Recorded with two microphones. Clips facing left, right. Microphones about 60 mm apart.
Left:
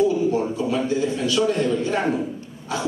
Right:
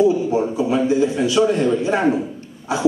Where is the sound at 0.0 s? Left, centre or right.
Centre.